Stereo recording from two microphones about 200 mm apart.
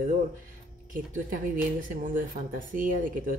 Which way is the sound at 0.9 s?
40° right (ahead or behind).